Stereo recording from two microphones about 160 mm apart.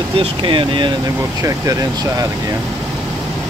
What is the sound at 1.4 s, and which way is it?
Speech, 20° right (ahead or behind).